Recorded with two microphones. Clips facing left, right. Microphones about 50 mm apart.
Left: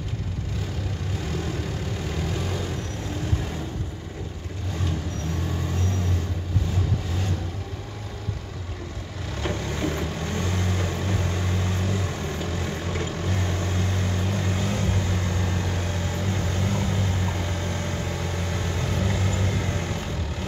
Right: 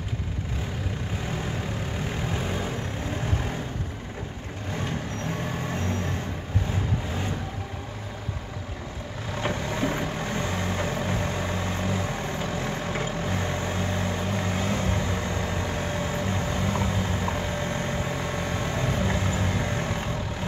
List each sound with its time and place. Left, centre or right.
2.3 s vehicle: right
9.4 s vehicle: centre